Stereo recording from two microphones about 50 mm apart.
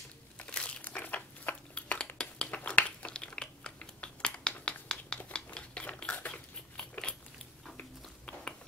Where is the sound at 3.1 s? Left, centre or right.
Centre.